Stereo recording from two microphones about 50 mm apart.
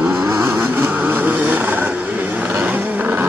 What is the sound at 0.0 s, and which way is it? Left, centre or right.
Vehicle, right.